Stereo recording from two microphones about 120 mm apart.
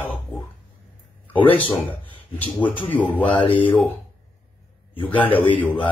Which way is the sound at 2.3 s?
15° left (ahead or behind).